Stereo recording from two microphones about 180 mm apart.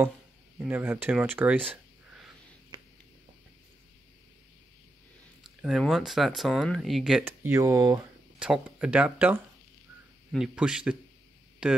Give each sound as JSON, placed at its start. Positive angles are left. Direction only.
{"t": 0.6, "sound": "speech", "side_deg": -10}
{"t": 5.6, "sound": "speech", "side_deg": 0}
{"t": 7.2, "sound": "speech", "side_deg": -15}
{"t": 8.4, "sound": "speech", "side_deg": -5}